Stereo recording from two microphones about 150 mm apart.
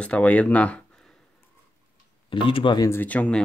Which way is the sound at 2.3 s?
35° left (ahead or behind).